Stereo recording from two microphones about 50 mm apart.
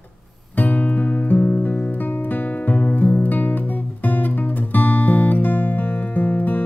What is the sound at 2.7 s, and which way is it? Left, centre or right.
Music, left.